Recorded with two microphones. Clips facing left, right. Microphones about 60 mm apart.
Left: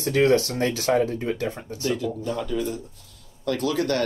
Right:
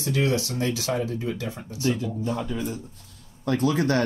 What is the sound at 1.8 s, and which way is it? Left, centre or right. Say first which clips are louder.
Speech: even; right.